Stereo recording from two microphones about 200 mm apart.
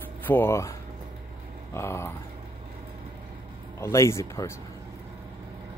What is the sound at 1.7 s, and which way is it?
Speech, 10° left (ahead or behind).